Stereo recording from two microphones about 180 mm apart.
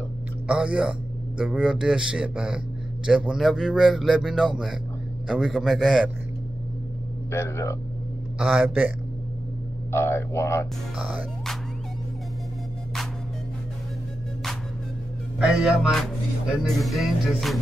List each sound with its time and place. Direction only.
0.5 s speech: 5° right (ahead or behind)
7.2 s speech: 15° left (ahead or behind)
8.4 s a man's voice: 5° right (ahead or behind)
9.8 s speech: 15° left (ahead or behind)
11.0 s speech: 5° right (ahead or behind)
15.3 s speech: 5° right (ahead or behind)